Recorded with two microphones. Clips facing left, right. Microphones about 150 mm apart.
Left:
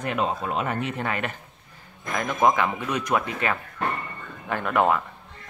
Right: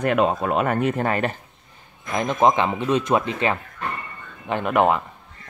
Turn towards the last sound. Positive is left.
turn(degrees=-20)  # may be behind; listen again after turning